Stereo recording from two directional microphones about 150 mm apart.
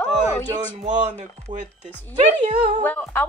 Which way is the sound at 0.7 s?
50° right (ahead or behind).